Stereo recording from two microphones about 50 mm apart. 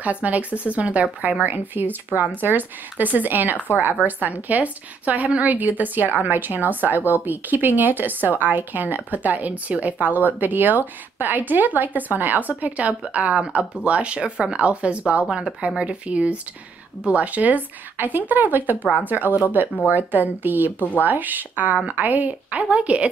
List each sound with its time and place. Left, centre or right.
0.0 s a woman's voice: right
1.4 s a woman's voice: right; by 15.5 s centre
15.8 s a woman's voice: right